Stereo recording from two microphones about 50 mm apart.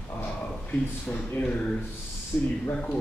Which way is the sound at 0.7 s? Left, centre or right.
Left.